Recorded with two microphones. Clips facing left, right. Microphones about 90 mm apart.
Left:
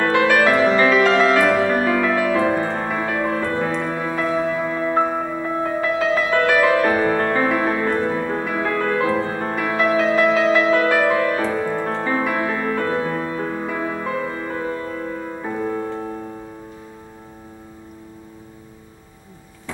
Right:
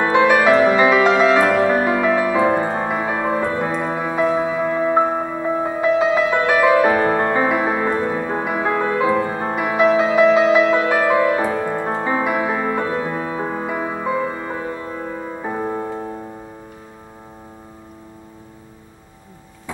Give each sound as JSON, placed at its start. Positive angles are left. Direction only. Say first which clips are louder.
{"t": 0.0, "sound": "music", "louder": "right 2 dB", "side_deg": -20}